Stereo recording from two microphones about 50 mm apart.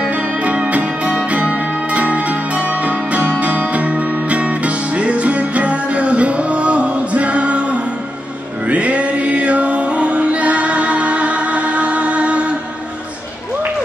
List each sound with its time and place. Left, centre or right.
0.0 s music: right